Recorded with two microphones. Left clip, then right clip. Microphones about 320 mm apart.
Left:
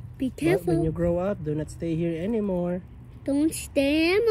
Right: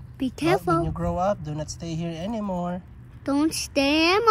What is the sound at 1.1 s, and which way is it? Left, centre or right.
Speech, centre.